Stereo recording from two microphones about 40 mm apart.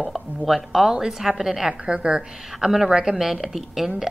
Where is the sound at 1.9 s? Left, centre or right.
Right.